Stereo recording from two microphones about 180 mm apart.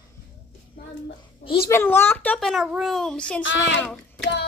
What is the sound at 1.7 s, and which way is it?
A child's voice, 15° left (ahead or behind).